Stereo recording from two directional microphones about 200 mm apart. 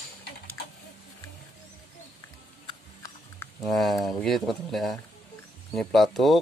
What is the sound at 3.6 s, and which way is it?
Speech, centre (ahead or behind).